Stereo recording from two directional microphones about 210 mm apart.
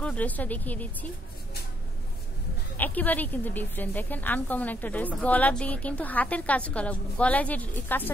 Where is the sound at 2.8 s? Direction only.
10° left (ahead or behind).